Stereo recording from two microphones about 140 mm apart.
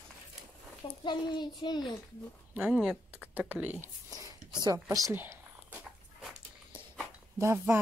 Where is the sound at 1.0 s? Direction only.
30° left (ahead or behind).